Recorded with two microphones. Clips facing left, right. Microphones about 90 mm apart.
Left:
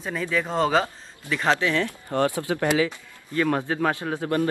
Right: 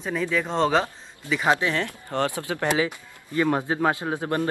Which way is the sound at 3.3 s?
15° right (ahead or behind).